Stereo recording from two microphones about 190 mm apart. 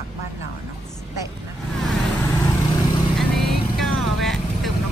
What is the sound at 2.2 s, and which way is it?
Vehicle, 20° left (ahead or behind).